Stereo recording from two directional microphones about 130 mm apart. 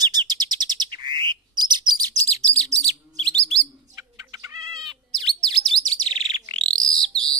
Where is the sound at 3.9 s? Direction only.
25° right (ahead or behind).